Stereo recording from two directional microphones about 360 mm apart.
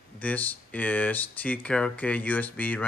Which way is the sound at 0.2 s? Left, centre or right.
Centre.